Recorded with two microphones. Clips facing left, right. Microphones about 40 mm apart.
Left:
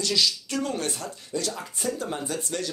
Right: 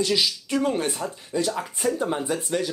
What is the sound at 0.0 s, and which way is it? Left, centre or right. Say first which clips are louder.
Speech: right 2 dB; centre.